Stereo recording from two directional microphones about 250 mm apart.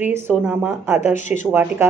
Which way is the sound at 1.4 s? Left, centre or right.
Centre.